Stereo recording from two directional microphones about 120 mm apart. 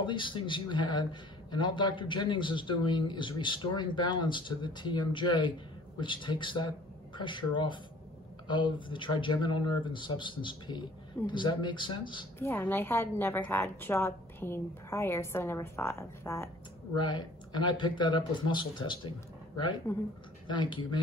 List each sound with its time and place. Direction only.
0.0 s a man's voice: 45° left (ahead or behind)
12.4 s a woman's voice: 15° left (ahead or behind)
17.0 s a man's voice: 40° left (ahead or behind)
19.9 s a woman's voice: 20° left (ahead or behind)
20.4 s a man's voice: 40° left (ahead or behind)